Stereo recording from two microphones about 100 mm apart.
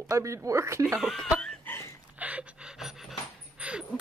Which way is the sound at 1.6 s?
25° left (ahead or behind).